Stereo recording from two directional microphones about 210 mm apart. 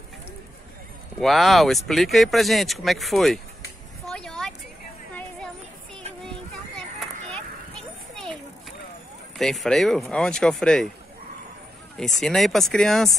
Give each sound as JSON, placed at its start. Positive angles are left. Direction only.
{"t": 1.2, "sound": "speech", "side_deg": 0}
{"t": 4.1, "sound": "a sound", "side_deg": 0}
{"t": 7.0, "sound": "children playing", "side_deg": 5}
{"t": 9.4, "sound": "speech", "side_deg": 0}
{"t": 12.0, "sound": "speech", "side_deg": 0}